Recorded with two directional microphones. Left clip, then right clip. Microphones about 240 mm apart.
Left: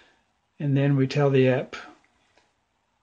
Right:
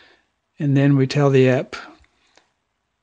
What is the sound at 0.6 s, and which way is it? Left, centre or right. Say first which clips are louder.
Speech: right 6 dB; right.